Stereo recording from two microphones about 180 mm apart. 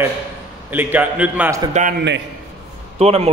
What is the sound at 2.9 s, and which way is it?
Speech, 35° right (ahead or behind).